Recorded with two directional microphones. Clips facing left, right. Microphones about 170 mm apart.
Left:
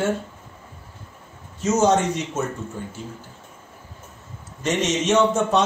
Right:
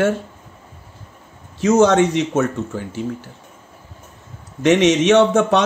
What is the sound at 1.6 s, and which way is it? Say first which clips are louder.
Speech: right 5 dB; 75° right (ahead or behind).